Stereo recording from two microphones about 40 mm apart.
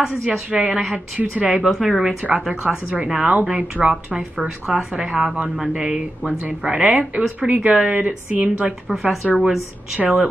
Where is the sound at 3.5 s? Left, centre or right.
Right.